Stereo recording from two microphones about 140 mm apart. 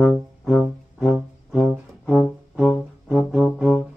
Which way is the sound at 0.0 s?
Centre (ahead or behind).